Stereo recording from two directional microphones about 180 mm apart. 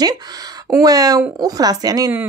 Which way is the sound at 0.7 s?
20° right (ahead or behind).